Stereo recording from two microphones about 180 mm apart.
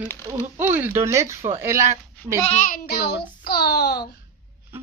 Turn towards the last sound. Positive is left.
turn(degrees=65)  # may be behind; listen again after turning